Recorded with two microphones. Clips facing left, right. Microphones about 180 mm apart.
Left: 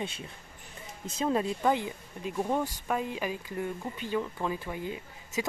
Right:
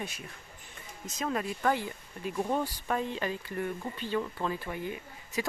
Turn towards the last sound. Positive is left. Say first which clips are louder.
# left 1 dB
turn(degrees=20)  # may be behind; listen again after turning